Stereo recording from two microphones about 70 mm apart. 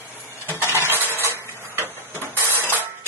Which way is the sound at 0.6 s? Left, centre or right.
Right.